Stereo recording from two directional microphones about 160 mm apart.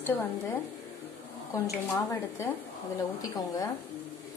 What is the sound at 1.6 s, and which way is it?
Speech, 20° left (ahead or behind).